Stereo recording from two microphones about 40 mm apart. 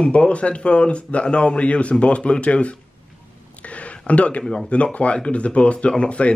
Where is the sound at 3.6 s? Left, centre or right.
Left.